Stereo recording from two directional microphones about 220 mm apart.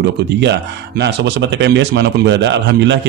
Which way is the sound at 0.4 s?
50° right (ahead or behind).